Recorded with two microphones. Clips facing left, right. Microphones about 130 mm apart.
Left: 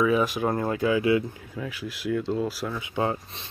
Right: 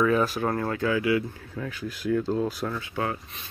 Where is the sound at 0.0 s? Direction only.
10° left (ahead or behind).